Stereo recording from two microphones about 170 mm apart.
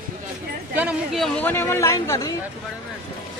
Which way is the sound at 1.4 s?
15° left (ahead or behind).